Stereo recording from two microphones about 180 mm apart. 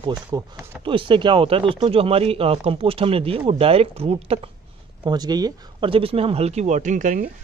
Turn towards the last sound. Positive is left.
turn(degrees=-45)  # may be behind; listen again after turning